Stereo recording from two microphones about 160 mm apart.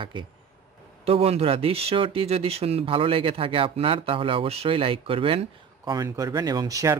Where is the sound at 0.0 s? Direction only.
30° right (ahead or behind).